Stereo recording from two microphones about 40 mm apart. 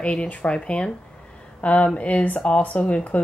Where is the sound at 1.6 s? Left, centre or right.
Left.